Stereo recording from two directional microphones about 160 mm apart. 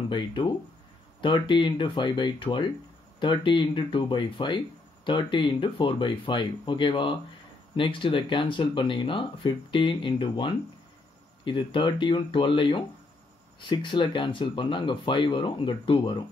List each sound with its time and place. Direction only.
0.1 s speech: 30° left (ahead or behind)